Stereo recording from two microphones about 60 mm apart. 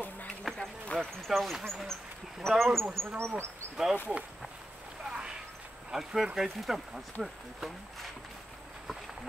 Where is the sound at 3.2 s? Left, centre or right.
Right.